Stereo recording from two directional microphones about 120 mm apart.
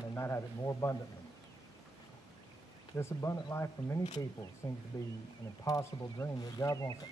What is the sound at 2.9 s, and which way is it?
Speech, 20° left (ahead or behind).